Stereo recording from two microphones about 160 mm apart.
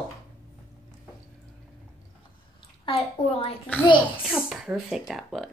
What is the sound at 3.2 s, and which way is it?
Speech, 45° left (ahead or behind).